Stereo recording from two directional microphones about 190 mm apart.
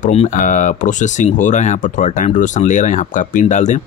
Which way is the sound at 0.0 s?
35° left (ahead or behind).